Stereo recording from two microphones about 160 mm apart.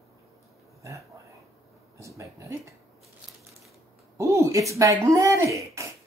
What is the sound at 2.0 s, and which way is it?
Speech, 20° right (ahead or behind).